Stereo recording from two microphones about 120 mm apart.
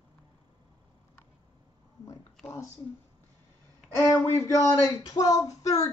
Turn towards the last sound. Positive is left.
turn(degrees=30)  # may be behind; listen again after turning